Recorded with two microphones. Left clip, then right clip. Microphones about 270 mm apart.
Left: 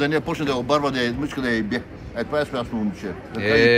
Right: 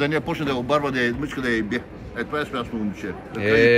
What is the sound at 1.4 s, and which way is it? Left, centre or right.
A man's voice, left.